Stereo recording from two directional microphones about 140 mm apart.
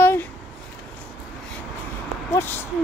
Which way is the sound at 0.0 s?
15° left (ahead or behind).